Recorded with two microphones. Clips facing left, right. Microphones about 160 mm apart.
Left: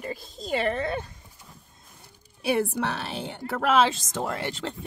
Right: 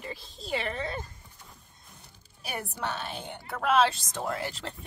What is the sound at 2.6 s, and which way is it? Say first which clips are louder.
A woman's voice: left 7 dB; 85° left.